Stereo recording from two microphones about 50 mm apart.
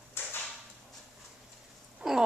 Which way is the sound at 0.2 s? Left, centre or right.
Left.